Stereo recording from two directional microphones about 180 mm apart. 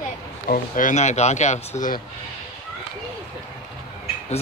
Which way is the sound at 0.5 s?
45° left (ahead or behind).